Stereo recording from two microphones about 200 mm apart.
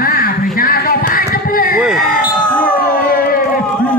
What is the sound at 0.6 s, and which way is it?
Music, 45° left (ahead or behind).